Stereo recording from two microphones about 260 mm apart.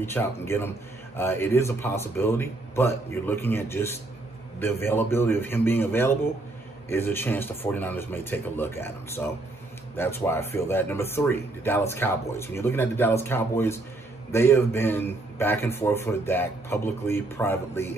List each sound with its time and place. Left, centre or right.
0.0 s speech: centre